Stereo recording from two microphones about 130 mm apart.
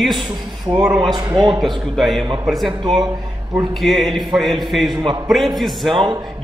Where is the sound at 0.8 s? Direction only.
5° right (ahead or behind).